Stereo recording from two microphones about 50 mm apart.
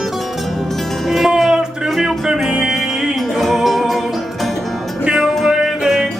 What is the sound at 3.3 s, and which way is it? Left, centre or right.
Music, centre.